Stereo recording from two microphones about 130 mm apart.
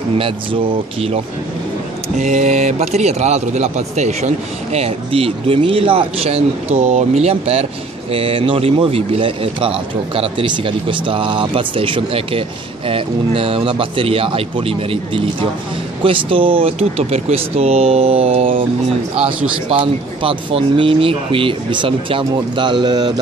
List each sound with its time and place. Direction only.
2.1 s a man's voice: 65° right (ahead or behind)
4.7 s speech: 50° right (ahead or behind)
19.7 s speech: 40° right (ahead or behind)